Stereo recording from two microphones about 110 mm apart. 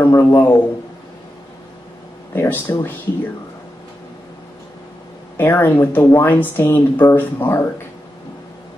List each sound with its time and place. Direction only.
0.0 s a man's voice: 20° left (ahead or behind)
2.3 s speech: 20° left (ahead or behind)
5.4 s speech: 20° left (ahead or behind)